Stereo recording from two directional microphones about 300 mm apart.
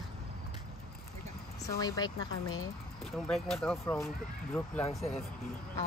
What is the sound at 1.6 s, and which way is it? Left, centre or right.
Speech, centre.